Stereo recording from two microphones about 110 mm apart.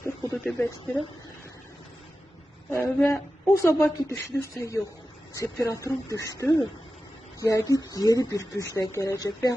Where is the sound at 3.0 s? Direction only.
25° left (ahead or behind).